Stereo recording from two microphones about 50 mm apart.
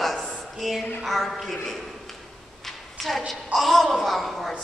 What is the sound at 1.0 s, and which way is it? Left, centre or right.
Speech, centre.